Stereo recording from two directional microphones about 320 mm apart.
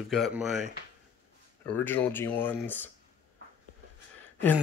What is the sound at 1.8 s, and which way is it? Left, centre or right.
Speech, centre.